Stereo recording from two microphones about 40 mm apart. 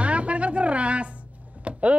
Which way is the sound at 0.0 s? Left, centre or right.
Right.